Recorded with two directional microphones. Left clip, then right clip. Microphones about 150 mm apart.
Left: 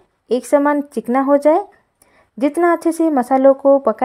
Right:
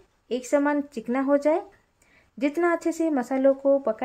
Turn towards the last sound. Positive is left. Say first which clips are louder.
# left 9 dB
turn(degrees=30)  # may be behind; listen again after turning